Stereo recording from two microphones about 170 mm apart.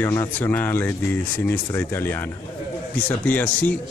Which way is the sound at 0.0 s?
15° left (ahead or behind).